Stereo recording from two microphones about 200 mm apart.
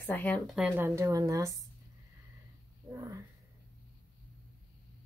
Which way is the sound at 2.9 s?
15° right (ahead or behind).